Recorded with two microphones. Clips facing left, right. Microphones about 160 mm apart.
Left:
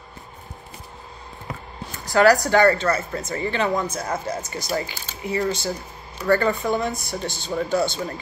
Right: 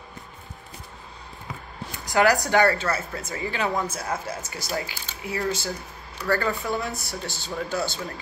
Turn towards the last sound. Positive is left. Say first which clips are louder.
# left 6 dB
turn(degrees=0)  # may be behind; listen again after turning